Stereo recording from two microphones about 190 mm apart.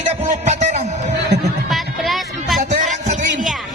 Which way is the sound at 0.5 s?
40° right (ahead or behind).